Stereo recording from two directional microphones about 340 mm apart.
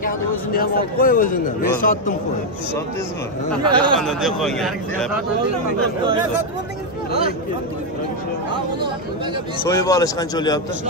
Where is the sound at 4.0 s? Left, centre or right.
Centre.